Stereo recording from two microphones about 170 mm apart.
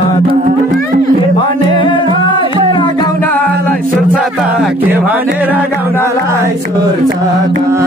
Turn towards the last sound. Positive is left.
turn(degrees=-15)  # may be behind; listen again after turning